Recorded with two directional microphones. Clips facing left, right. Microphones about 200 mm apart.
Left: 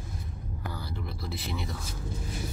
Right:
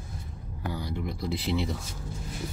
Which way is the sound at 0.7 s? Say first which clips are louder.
Right 5 dB; 15° right (ahead or behind).